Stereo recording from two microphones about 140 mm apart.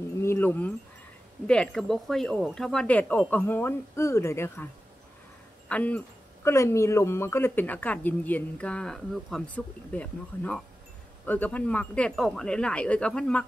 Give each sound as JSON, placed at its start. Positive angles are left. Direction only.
{"t": 0.2, "sound": "a sound", "side_deg": 15}
{"t": 1.5, "sound": "speech", "side_deg": 5}
{"t": 5.7, "sound": "speech", "side_deg": 10}